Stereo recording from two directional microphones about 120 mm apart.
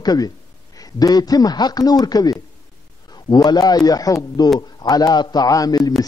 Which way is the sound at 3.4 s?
35° left (ahead or behind).